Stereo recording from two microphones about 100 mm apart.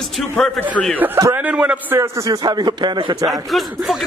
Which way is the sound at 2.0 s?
35° right (ahead or behind).